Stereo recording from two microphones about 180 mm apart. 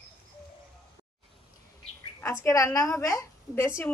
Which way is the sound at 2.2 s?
15° left (ahead or behind).